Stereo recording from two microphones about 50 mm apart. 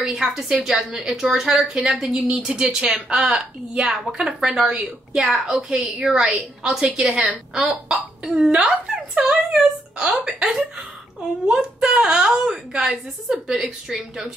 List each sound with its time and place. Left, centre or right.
0.0 s a woman's voice: centre
9.5 s a woman's voice: centre